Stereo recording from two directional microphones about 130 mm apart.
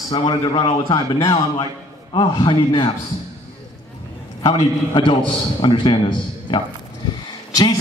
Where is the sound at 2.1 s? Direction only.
40° left (ahead or behind).